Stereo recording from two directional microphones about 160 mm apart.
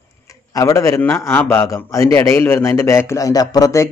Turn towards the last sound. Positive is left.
turn(degrees=20)  # may be behind; listen again after turning